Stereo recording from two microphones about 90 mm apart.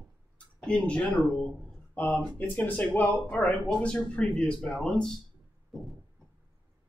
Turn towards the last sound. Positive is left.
turn(degrees=5)  # may be behind; listen again after turning